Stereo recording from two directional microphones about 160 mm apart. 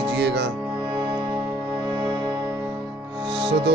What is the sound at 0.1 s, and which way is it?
Music, 90° right.